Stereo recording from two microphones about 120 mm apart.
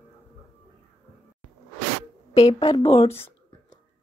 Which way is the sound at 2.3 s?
55° left (ahead or behind).